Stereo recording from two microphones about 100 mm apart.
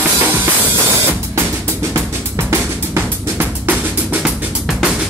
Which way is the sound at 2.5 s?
20° right (ahead or behind).